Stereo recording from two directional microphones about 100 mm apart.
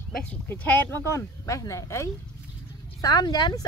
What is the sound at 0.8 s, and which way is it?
Speech, 25° left (ahead or behind).